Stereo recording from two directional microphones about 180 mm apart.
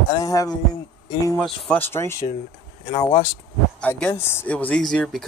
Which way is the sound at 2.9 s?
30° left (ahead or behind).